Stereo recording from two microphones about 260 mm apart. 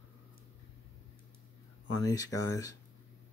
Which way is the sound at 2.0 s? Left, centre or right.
Centre.